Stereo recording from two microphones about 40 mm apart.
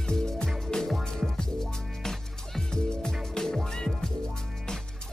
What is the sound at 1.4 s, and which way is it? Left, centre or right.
Music, centre.